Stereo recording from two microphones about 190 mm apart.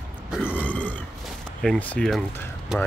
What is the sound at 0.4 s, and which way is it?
Burping, 10° left (ahead or behind).